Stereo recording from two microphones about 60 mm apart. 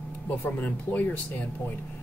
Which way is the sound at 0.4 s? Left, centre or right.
Left.